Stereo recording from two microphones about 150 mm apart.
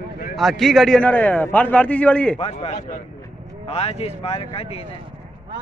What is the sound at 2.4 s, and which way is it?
A man's voice, 45° left (ahead or behind).